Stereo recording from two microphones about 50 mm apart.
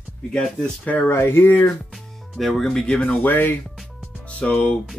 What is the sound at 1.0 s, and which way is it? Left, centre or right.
Speech, left.